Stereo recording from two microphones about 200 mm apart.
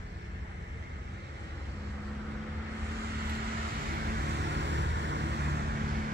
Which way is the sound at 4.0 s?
50° right (ahead or behind).